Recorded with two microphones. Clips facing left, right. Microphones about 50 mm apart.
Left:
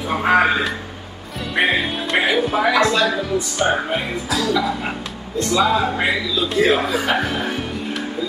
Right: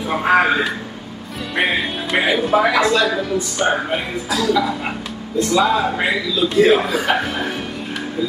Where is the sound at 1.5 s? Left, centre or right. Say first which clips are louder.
Left 1 dB; centre.